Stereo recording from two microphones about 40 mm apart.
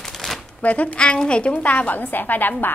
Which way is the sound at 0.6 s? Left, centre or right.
Left.